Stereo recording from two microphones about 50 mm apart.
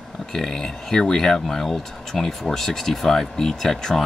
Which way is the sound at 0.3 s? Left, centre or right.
Centre.